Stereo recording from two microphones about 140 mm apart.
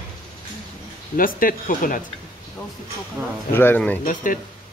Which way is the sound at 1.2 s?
90° left.